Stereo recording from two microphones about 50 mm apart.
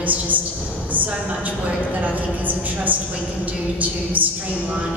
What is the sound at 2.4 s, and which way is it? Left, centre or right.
A woman's voice, right.